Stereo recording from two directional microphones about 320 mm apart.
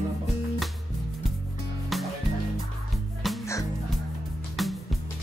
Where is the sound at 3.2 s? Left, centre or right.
Centre.